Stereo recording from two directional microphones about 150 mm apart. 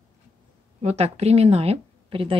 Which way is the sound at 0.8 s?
45° right (ahead or behind).